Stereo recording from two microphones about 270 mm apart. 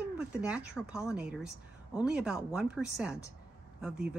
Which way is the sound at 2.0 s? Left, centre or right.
Centre.